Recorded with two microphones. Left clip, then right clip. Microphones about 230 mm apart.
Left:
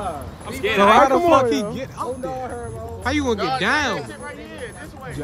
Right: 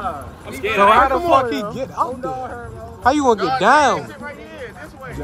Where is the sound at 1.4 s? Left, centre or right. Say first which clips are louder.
Left 1 dB; left.